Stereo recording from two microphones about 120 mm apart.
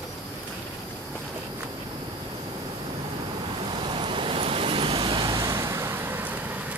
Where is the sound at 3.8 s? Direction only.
45° right (ahead or behind).